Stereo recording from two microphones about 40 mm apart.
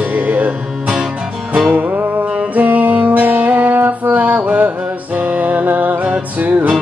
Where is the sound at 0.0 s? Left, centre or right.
Right.